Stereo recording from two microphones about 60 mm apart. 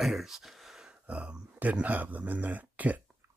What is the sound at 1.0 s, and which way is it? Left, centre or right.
Speech, centre.